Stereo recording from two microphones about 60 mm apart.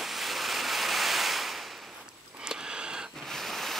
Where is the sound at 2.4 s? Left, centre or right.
Centre.